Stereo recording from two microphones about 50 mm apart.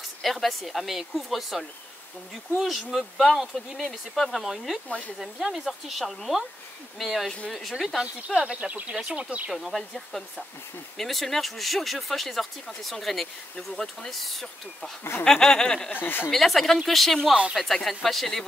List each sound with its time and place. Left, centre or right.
0.2 s speech: centre
4.8 s speech: left
5.2 s speech: centre
8.5 s speech: right
9.5 s speech: centre
15.2 s a sound: centre
15.9 s speech: left
16.3 s speech: centre